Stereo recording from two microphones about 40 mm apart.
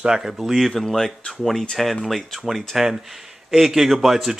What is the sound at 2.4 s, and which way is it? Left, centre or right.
Speech, centre.